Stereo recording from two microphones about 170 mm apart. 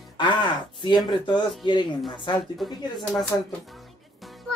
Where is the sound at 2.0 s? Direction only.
Centre (ahead or behind).